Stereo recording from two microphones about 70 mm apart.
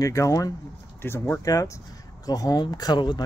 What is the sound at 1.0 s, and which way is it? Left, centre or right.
Speech, left.